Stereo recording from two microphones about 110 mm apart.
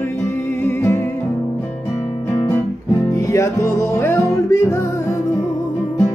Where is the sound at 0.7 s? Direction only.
25° left (ahead or behind).